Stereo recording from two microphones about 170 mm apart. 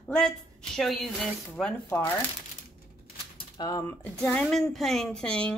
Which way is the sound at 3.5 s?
25° left (ahead or behind).